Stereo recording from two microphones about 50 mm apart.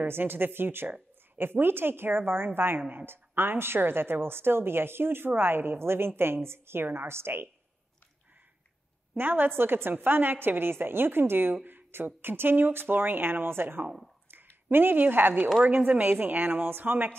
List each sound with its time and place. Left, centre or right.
0.0 s a woman's voice: right
9.1 s a woman's voice: right
13.8 s speech: centre
14.7 s a woman's voice: right